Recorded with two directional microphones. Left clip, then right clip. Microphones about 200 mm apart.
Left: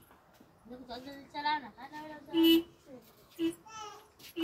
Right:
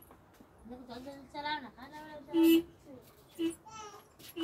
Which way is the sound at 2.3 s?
35° left (ahead or behind).